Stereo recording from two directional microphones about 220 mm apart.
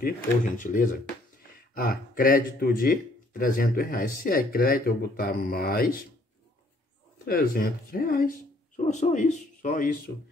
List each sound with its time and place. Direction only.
0.6 s speech: 35° left (ahead or behind)
7.2 s speech: 40° left (ahead or behind)